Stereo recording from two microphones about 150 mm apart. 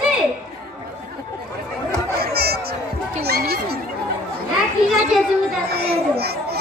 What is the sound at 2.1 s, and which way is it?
Chatter, 90° right.